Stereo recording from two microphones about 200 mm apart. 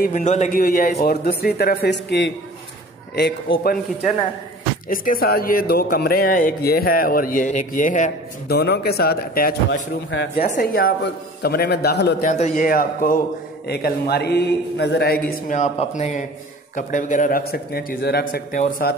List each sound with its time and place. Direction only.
0.0 s speech: 40° left (ahead or behind); by 2.3 s 60° left (ahead or behind)
4.8 s speech: 45° left (ahead or behind)
8.5 s speech: 55° left (ahead or behind)
10.4 s speech: 40° left (ahead or behind)
12.3 s speech: 35° left (ahead or behind); by 15.1 s 55° left (ahead or behind)
15.2 s speech: 40° left (ahead or behind)